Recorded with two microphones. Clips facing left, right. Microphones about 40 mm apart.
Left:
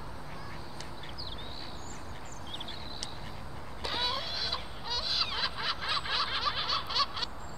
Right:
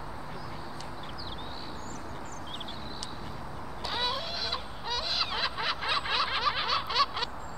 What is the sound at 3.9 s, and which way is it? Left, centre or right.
Fowl, centre.